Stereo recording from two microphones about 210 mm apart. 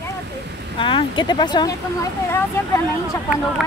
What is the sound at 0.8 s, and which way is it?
Speech, 25° left (ahead or behind).